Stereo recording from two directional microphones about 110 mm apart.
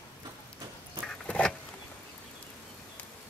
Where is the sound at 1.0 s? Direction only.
10° left (ahead or behind).